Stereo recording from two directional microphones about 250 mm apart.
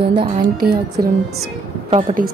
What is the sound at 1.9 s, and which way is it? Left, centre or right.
Speech, right.